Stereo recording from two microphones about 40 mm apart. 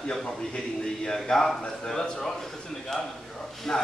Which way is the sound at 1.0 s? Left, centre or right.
Centre.